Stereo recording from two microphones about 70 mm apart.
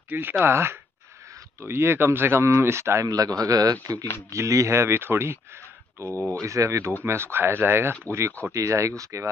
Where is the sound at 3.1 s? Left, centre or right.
Right.